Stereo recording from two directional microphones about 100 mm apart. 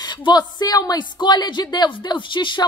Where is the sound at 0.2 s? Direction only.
45° left (ahead or behind).